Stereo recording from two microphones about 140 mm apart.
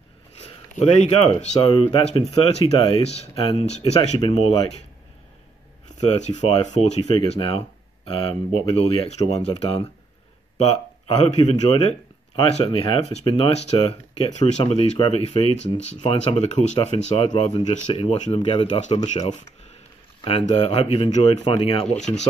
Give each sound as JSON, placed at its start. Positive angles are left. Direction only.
{"t": 0.7, "sound": "speech", "side_deg": 50}
{"t": 6.0, "sound": "speech", "side_deg": 50}
{"t": 7.2, "sound": "speech", "side_deg": 40}
{"t": 13.5, "sound": "speech", "side_deg": 50}
{"t": 16.2, "sound": "speech", "side_deg": 50}
{"t": 17.2, "sound": "speech", "side_deg": 35}
{"t": 17.9, "sound": "speech", "side_deg": 55}
{"t": 18.3, "sound": "speech", "side_deg": 40}
{"t": 18.9, "sound": "speech", "side_deg": 55}
{"t": 20.2, "sound": "speech", "side_deg": 45}